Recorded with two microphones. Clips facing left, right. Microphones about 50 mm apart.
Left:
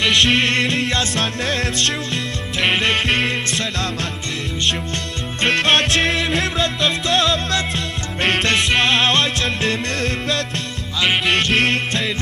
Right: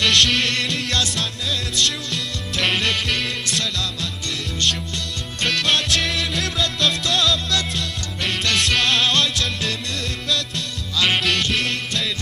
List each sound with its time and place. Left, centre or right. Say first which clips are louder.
0.0 s music: left 2 dB; centre
0.3 s music: left 5 dB; left
1.4 s music: even; left
2.5 s music: left 3 dB; left
2.9 s music: left 5 dB; left
6.8 s music: left 1 dB; left
7.2 s music: left 3 dB; left
8.7 s music: left 3 dB; left
11.0 s music: left 2 dB; centre
11.3 s music: left 5 dB; left